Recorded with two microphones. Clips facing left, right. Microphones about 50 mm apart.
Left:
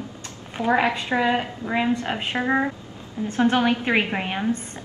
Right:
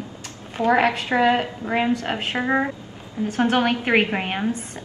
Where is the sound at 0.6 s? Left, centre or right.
Right.